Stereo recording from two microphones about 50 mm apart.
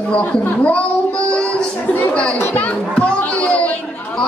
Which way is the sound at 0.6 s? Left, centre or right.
Left.